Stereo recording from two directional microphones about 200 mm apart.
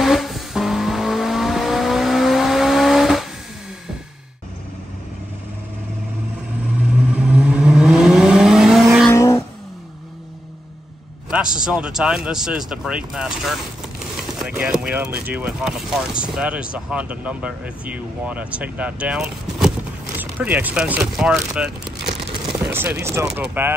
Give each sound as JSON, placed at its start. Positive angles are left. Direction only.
{"t": 0.0, "sound": "vehicle", "side_deg": 0}
{"t": 7.1, "sound": "vehicle", "side_deg": -5}
{"t": 9.1, "sound": "vehicle", "side_deg": 15}
{"t": 11.2, "sound": "speech", "side_deg": -5}